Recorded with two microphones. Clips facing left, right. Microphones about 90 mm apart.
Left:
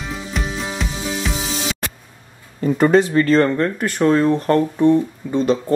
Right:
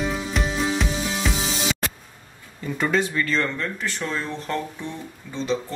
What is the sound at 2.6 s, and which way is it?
Speech, 45° left (ahead or behind).